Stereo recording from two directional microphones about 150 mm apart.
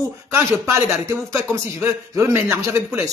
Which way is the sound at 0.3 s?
20° right (ahead or behind).